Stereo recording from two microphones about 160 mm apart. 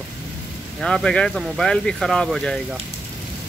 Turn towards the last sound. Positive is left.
turn(degrees=0)  # may be behind; listen again after turning